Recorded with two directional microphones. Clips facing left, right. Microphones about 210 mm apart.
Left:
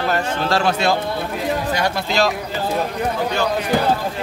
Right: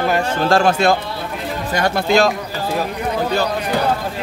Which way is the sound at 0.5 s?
50° right (ahead or behind).